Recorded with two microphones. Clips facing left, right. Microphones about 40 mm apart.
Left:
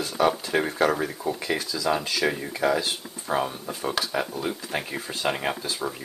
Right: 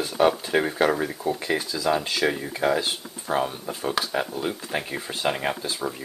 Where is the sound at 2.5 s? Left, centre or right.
Centre.